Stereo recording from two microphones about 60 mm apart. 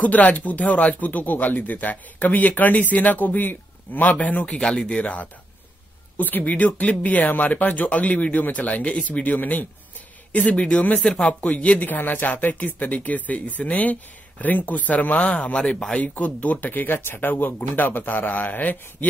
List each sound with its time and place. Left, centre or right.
0.0 s speech: left
4.5 s speech: centre